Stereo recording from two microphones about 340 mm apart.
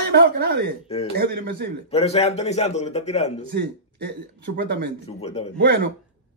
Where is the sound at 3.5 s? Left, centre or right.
Right.